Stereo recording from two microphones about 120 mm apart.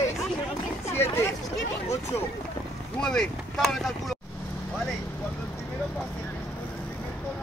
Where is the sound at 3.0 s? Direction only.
5° left (ahead or behind).